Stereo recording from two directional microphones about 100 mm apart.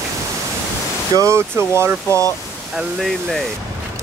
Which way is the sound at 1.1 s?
30° right (ahead or behind).